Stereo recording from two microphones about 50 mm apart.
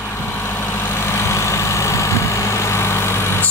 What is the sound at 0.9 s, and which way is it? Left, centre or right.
Vehicle, left.